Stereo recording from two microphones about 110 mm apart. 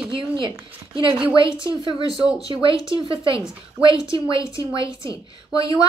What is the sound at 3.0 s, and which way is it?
A woman's voice, 55° right (ahead or behind).